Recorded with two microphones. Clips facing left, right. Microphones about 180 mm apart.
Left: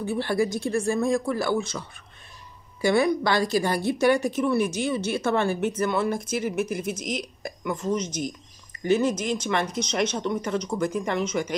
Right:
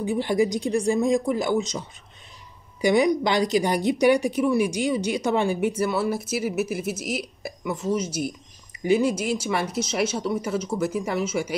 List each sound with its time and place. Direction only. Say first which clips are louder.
0.0 s a woman's voice: right 2 dB; 15° right (ahead or behind)